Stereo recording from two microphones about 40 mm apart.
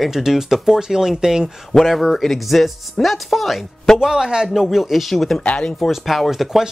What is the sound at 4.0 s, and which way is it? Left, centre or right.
Speech, centre.